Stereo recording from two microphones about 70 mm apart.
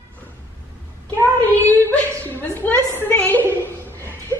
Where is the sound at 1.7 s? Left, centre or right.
Left.